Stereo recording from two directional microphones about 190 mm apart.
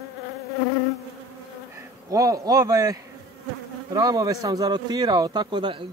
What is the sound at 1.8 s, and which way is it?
A man's voice, 20° right (ahead or behind).